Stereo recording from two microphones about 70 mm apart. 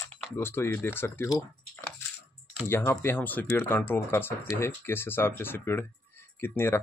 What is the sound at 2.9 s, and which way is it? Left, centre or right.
Speech, left.